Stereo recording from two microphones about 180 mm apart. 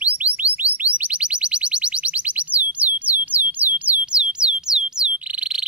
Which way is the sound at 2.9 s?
10° right (ahead or behind).